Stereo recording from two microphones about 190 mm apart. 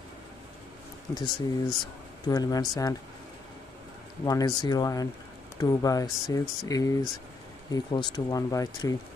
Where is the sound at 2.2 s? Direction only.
20° left (ahead or behind).